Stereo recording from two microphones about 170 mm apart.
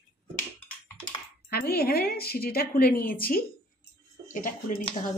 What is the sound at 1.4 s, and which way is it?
A woman's voice, 65° left (ahead or behind).